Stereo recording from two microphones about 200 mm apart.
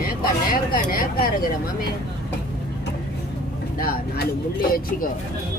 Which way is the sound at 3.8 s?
50° left (ahead or behind).